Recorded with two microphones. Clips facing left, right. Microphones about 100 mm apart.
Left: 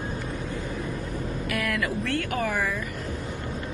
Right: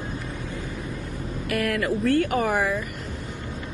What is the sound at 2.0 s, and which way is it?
Speech, 75° left (ahead or behind).